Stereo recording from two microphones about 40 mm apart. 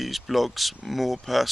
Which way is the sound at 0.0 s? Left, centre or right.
Centre.